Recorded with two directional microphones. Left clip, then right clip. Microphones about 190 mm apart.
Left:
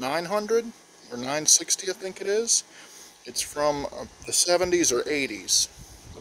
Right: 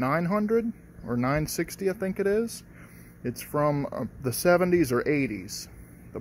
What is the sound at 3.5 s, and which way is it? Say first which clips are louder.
Speech: even; 20° left (ahead or behind).